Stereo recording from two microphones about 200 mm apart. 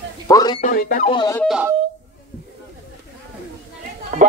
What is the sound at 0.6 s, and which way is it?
Speech, 45° left (ahead or behind).